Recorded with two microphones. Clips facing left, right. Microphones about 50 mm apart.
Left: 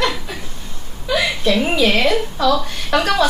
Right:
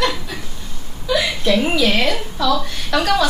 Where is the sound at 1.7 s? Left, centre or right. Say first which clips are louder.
Left 2 dB; left.